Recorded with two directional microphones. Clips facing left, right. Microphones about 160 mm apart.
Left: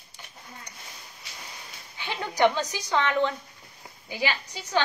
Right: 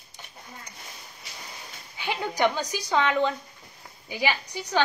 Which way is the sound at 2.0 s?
15° right (ahead or behind).